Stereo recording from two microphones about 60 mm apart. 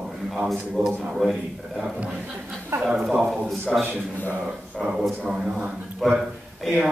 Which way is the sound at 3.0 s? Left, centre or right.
Centre.